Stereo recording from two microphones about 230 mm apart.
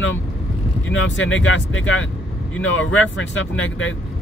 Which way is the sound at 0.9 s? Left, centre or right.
Left.